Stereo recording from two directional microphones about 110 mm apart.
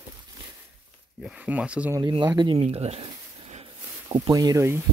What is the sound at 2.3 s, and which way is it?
Speech, 40° right (ahead or behind).